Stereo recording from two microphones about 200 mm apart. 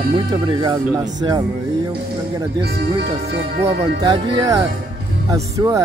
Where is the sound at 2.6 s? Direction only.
55° right (ahead or behind).